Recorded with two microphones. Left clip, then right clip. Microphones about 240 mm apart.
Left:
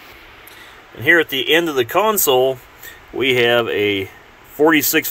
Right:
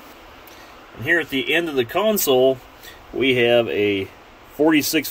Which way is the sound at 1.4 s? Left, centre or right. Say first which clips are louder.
Left 4 dB; centre.